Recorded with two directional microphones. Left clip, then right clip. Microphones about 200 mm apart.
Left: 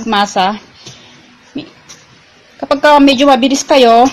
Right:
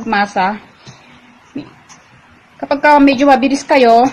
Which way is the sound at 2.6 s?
20° left (ahead or behind).